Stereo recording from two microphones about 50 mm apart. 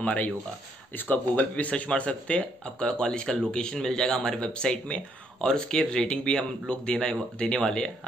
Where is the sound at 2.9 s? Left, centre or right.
Centre.